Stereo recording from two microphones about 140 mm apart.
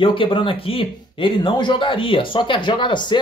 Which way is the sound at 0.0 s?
40° left (ahead or behind).